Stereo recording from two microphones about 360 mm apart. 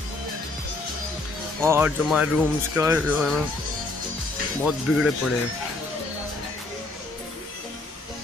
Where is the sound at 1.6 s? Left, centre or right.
Centre.